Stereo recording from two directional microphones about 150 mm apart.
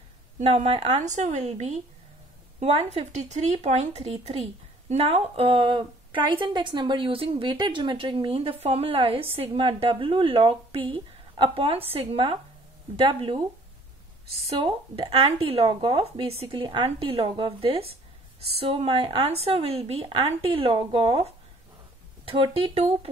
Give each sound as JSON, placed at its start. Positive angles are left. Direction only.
{"t": 0.4, "sound": "a woman's voice", "side_deg": -40}
{"t": 14.4, "sound": "speech", "side_deg": -40}